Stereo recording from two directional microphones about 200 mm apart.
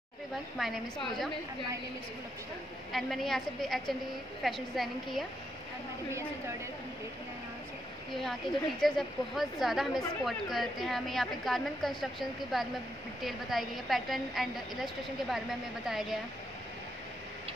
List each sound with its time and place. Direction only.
0.6 s a woman's voice: centre (ahead or behind)
2.9 s a woman's voice: centre (ahead or behind)
8.1 s a woman's voice: centre (ahead or behind)